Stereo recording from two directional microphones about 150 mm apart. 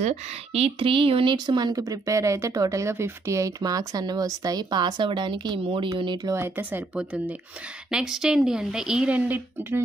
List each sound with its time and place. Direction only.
0.0 s speech: 45° right (ahead or behind)
6.3 s speech: 15° right (ahead or behind)